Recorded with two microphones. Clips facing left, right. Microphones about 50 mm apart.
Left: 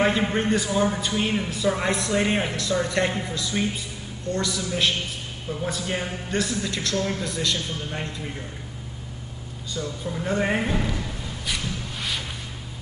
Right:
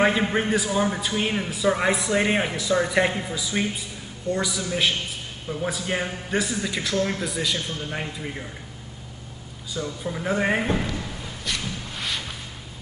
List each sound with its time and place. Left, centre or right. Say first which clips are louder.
0.0 s speech: right 1 dB; centre
9.8 s speech: right 1 dB; centre
11.4 s a sound: even; centre